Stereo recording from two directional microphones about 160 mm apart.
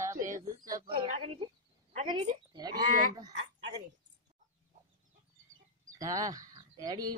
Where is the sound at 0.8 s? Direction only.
35° right (ahead or behind).